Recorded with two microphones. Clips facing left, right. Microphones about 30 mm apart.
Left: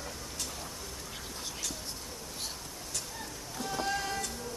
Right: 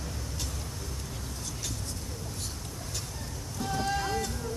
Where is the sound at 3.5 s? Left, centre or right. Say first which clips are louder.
Right 3 dB; centre.